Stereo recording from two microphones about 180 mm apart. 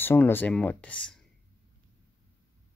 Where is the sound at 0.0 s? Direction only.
10° left (ahead or behind).